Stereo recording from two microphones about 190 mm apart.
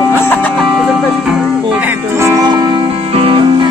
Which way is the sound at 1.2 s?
5° right (ahead or behind).